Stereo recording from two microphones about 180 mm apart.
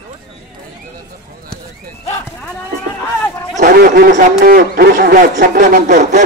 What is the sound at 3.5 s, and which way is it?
Speech, 50° right (ahead or behind).